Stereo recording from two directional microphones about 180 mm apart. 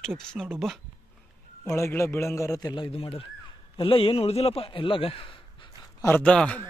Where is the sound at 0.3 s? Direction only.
Centre (ahead or behind).